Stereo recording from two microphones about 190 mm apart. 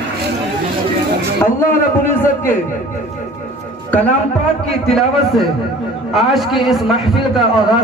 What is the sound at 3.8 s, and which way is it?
A woman's voice, 10° left (ahead or behind).